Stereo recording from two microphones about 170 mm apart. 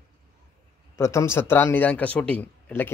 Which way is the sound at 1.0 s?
15° left (ahead or behind).